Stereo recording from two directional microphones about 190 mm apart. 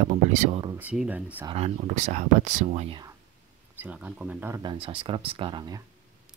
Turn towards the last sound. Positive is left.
turn(degrees=-25)  # may be behind; listen again after turning